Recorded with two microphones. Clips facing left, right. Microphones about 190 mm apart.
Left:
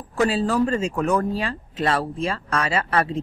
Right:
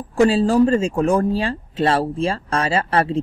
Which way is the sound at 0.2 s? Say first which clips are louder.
Right 6 dB; 30° right (ahead or behind).